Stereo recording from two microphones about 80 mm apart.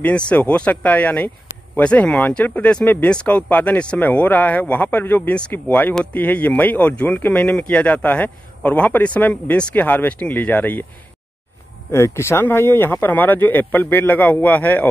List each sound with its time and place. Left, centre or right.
0.0 s speech: centre
11.9 s speech: left